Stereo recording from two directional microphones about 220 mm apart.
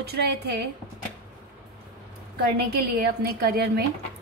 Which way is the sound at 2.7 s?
45° right (ahead or behind).